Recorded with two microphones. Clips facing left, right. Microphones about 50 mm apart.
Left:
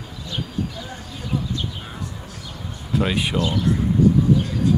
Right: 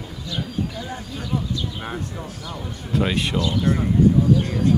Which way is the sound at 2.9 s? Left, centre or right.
Centre.